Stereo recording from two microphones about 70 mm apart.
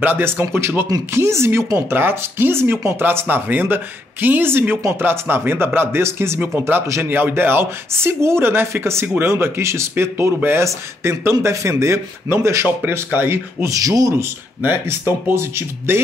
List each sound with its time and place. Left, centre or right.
0.0 s speech: right
6.4 s speech: right
12.6 s speech: right
13.7 s speech: right
14.1 s speech: right